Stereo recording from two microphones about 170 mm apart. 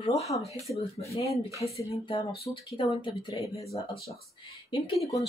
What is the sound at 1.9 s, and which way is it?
Speech, 30° left (ahead or behind).